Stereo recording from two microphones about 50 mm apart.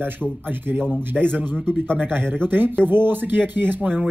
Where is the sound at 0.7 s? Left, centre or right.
Right.